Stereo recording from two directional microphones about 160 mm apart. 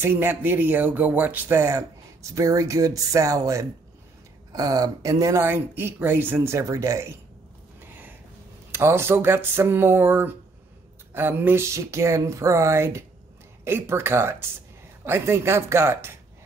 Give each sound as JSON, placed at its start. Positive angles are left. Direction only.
{"t": 0.0, "sound": "speech", "side_deg": -15}
{"t": 7.8, "sound": "a sound", "side_deg": -10}
{"t": 8.7, "sound": "speech", "side_deg": -15}